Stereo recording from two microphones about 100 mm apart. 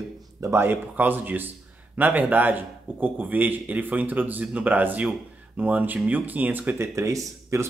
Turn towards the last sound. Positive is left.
turn(degrees=-30)  # may be behind; listen again after turning